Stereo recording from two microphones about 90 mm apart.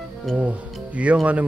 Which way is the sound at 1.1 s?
20° right (ahead or behind).